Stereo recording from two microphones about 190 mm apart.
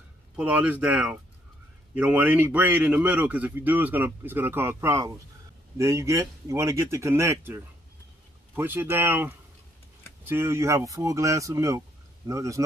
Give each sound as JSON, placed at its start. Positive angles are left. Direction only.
{"t": 0.4, "sound": "a man's voice", "side_deg": -5}